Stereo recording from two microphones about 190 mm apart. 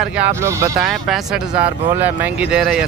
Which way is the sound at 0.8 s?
Centre (ahead or behind).